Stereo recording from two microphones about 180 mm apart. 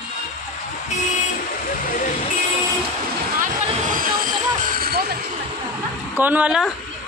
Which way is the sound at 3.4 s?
50° right (ahead or behind).